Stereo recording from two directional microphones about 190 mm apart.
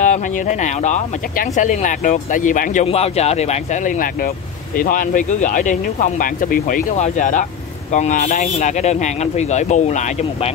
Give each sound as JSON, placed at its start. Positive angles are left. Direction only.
{"t": 0.0, "sound": "speech", "side_deg": 40}